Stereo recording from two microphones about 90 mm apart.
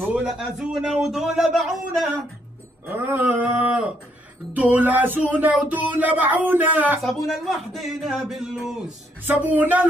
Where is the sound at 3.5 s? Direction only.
15° right (ahead or behind).